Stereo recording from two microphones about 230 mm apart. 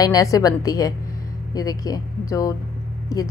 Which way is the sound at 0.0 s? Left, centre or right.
Centre.